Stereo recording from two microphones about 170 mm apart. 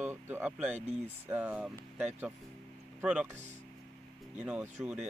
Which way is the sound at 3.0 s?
10° right (ahead or behind).